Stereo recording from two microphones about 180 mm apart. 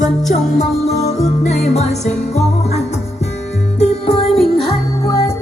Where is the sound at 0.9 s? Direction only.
35° left (ahead or behind).